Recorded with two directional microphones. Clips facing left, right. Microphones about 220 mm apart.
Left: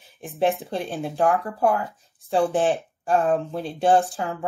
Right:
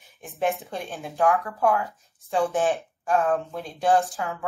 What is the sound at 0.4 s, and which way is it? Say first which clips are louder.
Speech: left 4 dB; 30° left (ahead or behind).